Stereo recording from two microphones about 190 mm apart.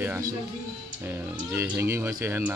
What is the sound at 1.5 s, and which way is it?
A child's voice, 15° right (ahead or behind).